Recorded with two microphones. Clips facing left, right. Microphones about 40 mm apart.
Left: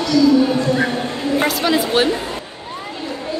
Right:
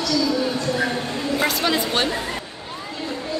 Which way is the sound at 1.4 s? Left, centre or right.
Centre.